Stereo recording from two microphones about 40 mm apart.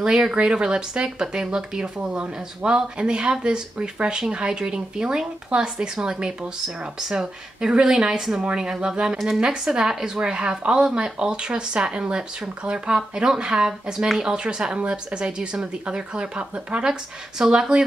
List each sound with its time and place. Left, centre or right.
0.0 s speech: centre